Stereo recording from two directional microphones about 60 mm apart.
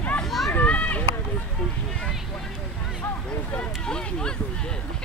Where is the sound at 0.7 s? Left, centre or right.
Left.